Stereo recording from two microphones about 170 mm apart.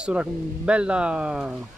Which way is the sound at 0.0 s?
5° right (ahead or behind).